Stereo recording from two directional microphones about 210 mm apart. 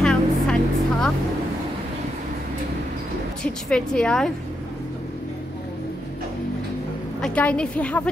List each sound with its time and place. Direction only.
0.0 s vehicle: centre (ahead or behind)
3.6 s a woman's voice: 5° left (ahead or behind)
7.2 s a woman's voice: 5° left (ahead or behind)